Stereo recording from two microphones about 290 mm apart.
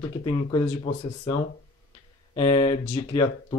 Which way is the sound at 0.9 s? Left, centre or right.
Centre.